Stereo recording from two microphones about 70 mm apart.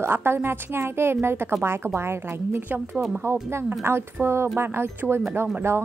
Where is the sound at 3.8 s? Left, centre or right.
Right.